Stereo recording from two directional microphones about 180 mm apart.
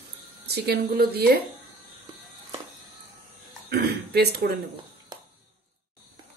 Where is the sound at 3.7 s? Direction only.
60° right (ahead or behind).